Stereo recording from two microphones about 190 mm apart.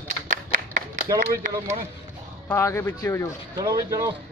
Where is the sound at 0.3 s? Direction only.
45° right (ahead or behind).